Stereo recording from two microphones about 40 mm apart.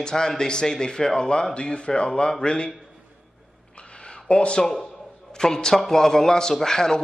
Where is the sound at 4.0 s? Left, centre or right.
Left.